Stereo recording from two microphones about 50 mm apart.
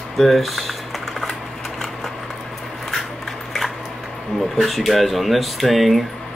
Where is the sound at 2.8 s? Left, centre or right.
Centre.